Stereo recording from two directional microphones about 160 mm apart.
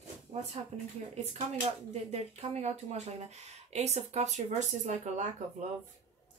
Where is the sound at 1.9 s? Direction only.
40° right (ahead or behind).